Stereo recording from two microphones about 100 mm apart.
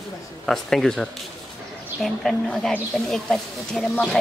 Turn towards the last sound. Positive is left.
turn(degrees=0)  # may be behind; listen again after turning